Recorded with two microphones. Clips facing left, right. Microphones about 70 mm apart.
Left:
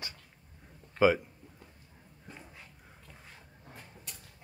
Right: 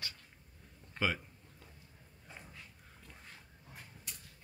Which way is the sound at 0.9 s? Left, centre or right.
Centre.